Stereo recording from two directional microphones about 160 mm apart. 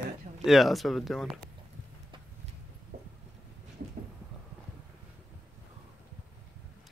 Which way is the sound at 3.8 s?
55° right (ahead or behind).